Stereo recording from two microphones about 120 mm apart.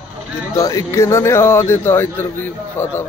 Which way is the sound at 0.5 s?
30° left (ahead or behind).